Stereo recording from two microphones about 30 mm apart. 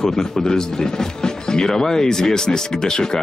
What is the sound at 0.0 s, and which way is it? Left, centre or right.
Speech, left.